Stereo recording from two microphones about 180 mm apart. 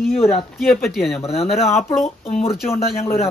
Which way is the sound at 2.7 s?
15° left (ahead or behind).